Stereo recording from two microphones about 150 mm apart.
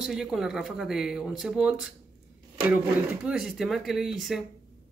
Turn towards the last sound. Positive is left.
turn(degrees=0)  # may be behind; listen again after turning